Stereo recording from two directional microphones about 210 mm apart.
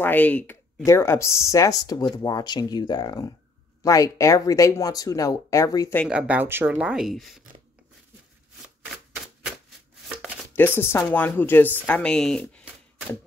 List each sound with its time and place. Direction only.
0.0 s speech: 10° left (ahead or behind)
6.0 s speech: 5° right (ahead or behind)
8.9 s typewriter: centre (ahead or behind)
10.5 s speech: 10° left (ahead or behind)